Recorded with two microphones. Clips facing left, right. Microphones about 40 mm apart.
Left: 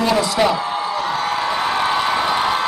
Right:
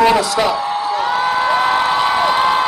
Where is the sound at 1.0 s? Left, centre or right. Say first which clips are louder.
Right 6 dB; centre.